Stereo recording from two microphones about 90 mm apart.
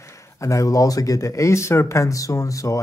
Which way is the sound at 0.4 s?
35° left (ahead or behind).